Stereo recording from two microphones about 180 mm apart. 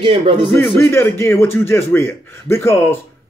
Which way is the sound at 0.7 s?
15° left (ahead or behind).